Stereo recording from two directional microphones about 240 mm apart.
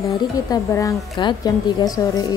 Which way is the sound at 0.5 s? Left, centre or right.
Centre.